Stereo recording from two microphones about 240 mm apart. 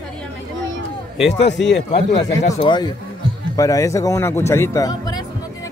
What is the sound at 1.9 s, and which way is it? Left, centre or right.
A man's voice, left.